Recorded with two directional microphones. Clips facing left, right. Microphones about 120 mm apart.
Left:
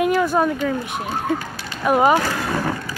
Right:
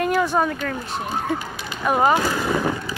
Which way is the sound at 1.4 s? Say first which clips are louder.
Even; 20° right (ahead or behind).